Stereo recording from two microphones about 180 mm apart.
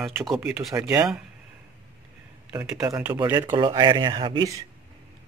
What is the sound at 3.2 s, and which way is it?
Speech, 20° right (ahead or behind).